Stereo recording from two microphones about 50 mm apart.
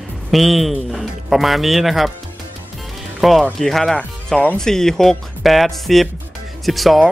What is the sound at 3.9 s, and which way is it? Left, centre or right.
Speech, centre.